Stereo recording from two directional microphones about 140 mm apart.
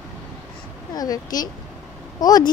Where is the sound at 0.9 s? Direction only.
25° left (ahead or behind).